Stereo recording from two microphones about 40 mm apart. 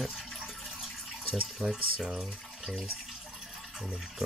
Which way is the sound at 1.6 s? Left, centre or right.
Centre.